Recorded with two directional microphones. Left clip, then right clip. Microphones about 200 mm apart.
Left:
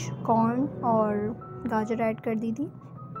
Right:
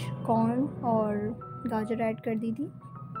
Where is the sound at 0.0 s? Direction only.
Centre (ahead or behind).